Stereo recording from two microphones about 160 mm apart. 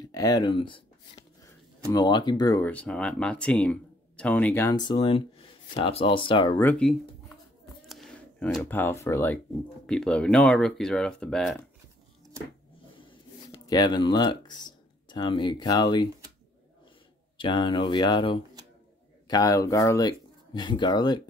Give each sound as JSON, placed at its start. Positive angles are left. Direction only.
{"t": 0.0, "sound": "speech", "side_deg": 25}
{"t": 1.4, "sound": "speech", "side_deg": 20}
{"t": 2.6, "sound": "speech", "side_deg": 10}
{"t": 4.8, "sound": "speech", "side_deg": 35}
{"t": 6.6, "sound": "speech", "side_deg": 10}
{"t": 7.9, "sound": "a sound", "side_deg": 0}
{"t": 8.6, "sound": "speech", "side_deg": 10}
{"t": 13.0, "sound": "speech", "side_deg": 30}
{"t": 17.4, "sound": "speech", "side_deg": 30}